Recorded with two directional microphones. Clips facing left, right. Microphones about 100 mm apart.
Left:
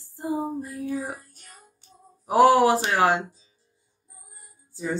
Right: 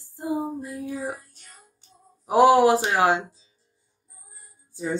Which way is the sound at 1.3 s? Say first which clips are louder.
Left 2 dB; 10° left (ahead or behind).